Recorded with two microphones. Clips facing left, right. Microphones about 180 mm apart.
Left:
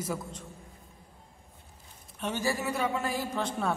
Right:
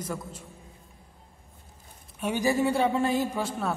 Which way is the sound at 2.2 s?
15° right (ahead or behind).